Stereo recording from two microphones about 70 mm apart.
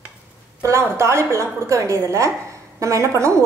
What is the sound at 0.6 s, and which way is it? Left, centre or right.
A woman's voice, right.